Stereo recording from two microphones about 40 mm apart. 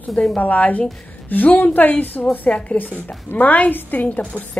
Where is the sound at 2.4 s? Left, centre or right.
Left.